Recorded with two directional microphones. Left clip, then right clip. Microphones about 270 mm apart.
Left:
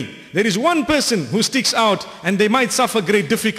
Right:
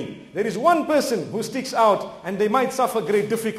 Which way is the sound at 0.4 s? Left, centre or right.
Left.